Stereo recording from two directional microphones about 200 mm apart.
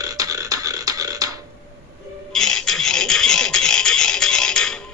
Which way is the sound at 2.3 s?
5° left (ahead or behind).